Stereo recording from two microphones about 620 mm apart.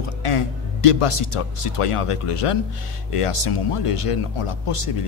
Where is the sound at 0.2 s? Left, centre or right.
Left.